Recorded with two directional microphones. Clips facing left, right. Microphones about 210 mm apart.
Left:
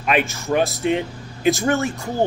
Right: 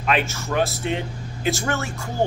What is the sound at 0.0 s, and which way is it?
Speech, 15° left (ahead or behind).